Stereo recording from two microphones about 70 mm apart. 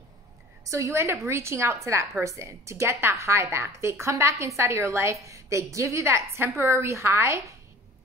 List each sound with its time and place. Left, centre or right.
0.7 s a woman's voice: right